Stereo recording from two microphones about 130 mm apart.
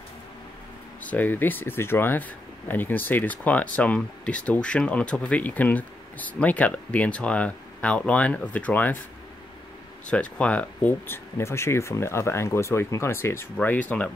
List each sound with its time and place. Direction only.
1.1 s speech: 15° left (ahead or behind)
10.0 s speech: 10° left (ahead or behind)